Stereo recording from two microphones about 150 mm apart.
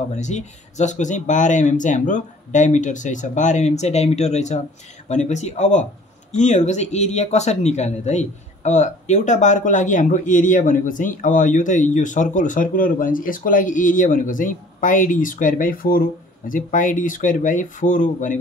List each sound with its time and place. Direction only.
0.1 s speech: 50° left (ahead or behind); by 16.0 s 70° left (ahead or behind)
16.4 s speech: 60° left (ahead or behind)